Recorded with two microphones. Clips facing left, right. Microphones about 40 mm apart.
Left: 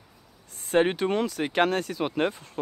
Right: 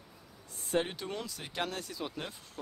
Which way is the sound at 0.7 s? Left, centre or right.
Left.